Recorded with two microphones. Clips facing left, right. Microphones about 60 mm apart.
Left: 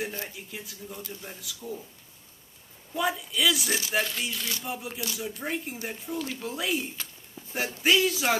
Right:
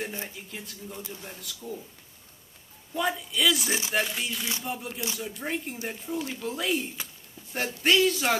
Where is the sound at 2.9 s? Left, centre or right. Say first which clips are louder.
Even; centre.